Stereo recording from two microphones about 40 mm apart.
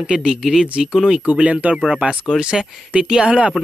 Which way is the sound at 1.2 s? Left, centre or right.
Right.